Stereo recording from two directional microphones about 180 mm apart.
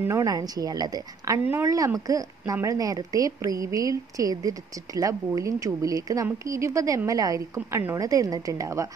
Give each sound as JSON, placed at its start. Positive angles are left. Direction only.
{"t": 0.0, "sound": "a woman's voice", "side_deg": -20}